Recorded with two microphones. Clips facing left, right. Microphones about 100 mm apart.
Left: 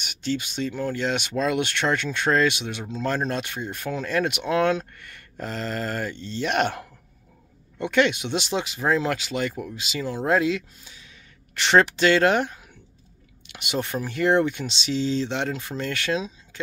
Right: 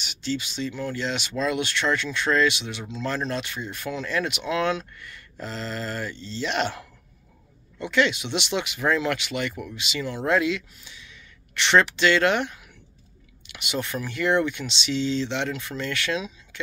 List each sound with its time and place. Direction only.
0.0 s speech: 50° left (ahead or behind); by 16.6 s 35° left (ahead or behind)